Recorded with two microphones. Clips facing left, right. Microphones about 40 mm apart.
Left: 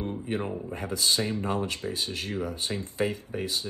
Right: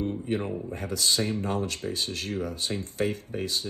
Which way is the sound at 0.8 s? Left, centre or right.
Left.